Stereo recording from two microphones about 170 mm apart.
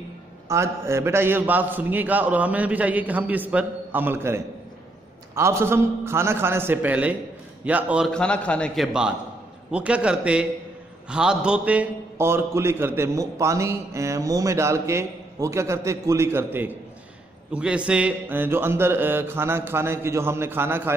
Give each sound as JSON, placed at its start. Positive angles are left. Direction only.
{"t": 0.5, "sound": "a man's voice", "side_deg": -15}
{"t": 8.1, "sound": "a man's voice", "side_deg": 5}